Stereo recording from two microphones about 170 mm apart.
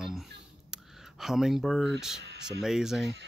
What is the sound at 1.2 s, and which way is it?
Speech, centre (ahead or behind).